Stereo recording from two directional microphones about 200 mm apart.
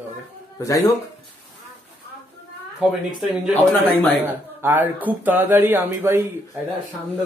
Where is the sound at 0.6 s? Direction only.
15° left (ahead or behind).